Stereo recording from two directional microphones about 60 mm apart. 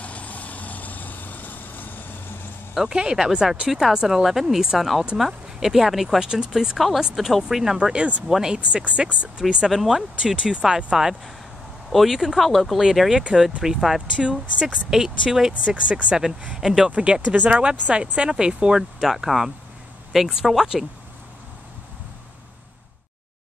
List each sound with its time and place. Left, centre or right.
0.0 s vehicle: left
2.7 s speech: centre
8.5 s speech: right
9.4 s speech: centre
15.6 s speech: centre
16.9 s speech: centre
18.8 s speech: centre